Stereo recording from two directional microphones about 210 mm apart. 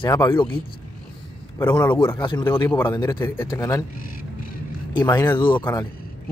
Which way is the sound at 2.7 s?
10° left (ahead or behind).